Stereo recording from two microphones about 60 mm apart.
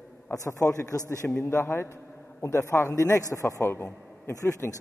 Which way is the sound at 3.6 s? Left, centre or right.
Left.